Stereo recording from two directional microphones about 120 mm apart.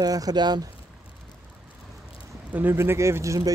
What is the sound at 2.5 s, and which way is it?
Speech, 20° right (ahead or behind).